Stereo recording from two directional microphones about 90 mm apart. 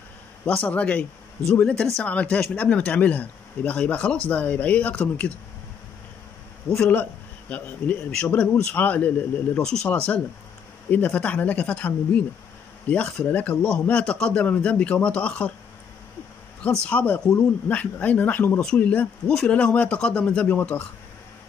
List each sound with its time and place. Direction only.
0.7 s speech: 15° left (ahead or behind)
6.7 s a man's voice: 25° left (ahead or behind)
9.6 s speech: 5° left (ahead or behind)
16.8 s a man's voice: 15° left (ahead or behind)